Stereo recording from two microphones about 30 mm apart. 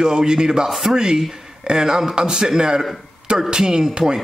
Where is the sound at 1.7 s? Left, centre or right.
Centre.